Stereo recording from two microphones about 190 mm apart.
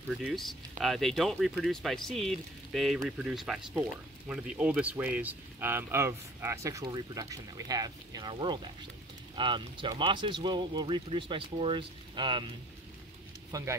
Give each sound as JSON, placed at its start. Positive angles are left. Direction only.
{"t": 0.1, "sound": "speech", "side_deg": 0}
{"t": 13.5, "sound": "speech", "side_deg": -15}